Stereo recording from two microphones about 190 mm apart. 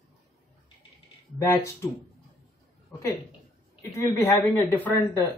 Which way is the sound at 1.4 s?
15° left (ahead or behind).